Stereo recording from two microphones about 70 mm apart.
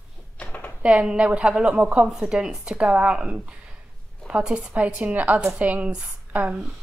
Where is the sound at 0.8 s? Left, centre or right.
Centre.